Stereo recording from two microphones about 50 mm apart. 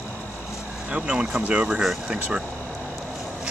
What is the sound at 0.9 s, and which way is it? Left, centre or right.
Speech, right.